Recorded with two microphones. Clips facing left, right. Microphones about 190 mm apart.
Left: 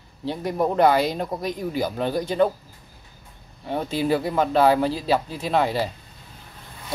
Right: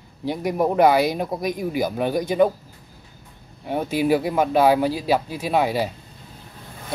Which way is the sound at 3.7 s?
10° right (ahead or behind).